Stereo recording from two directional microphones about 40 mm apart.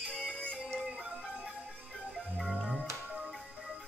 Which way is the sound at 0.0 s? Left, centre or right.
Left.